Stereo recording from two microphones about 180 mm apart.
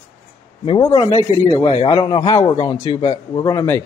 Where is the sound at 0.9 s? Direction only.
25° left (ahead or behind).